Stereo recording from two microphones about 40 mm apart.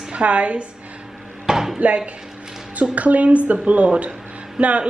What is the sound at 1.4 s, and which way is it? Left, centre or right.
Dishes, centre.